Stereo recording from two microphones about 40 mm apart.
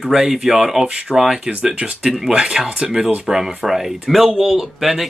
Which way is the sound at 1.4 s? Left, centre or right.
Right.